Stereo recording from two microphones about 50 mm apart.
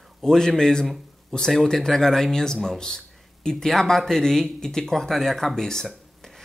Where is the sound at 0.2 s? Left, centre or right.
Centre.